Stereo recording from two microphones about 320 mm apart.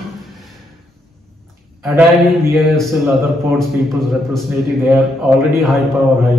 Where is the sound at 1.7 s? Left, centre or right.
Centre.